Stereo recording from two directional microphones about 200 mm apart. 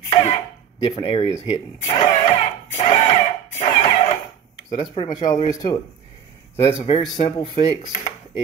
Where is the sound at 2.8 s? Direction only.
35° left (ahead or behind).